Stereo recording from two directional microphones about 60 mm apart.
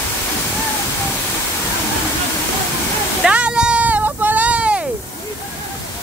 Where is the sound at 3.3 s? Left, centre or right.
Centre.